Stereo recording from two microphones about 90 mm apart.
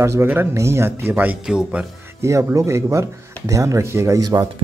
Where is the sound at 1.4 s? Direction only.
10° right (ahead or behind).